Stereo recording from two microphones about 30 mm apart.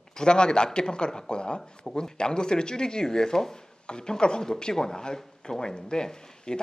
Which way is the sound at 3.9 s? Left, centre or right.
Left.